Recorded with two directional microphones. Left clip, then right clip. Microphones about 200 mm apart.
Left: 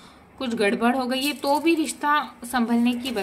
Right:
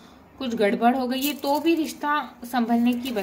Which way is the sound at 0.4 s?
20° left (ahead or behind).